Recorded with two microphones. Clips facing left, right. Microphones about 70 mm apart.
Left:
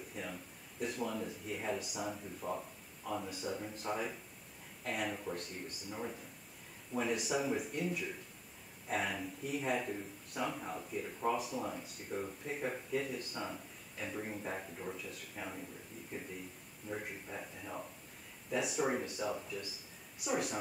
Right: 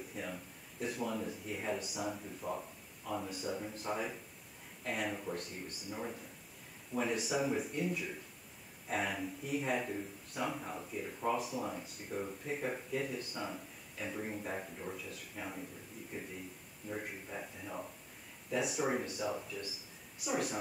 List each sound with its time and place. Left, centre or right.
0.1 s speech: centre
16.9 s speech: centre